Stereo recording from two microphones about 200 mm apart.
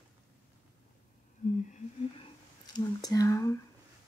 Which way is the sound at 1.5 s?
40° left (ahead or behind).